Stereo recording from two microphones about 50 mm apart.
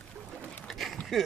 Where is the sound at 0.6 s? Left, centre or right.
Centre.